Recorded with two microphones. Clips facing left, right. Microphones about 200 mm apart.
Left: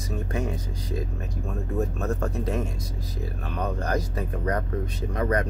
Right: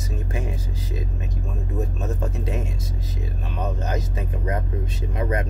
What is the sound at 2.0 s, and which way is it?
Speech, 20° right (ahead or behind).